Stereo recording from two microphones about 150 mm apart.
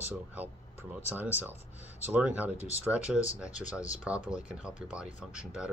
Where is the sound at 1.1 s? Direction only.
10° right (ahead or behind).